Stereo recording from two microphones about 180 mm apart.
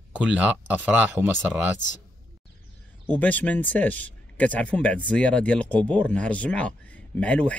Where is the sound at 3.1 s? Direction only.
10° left (ahead or behind).